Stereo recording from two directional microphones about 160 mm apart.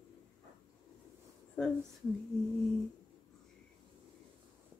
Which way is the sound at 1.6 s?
5° left (ahead or behind).